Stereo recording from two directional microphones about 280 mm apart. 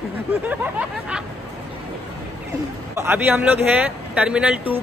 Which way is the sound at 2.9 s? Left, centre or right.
Centre.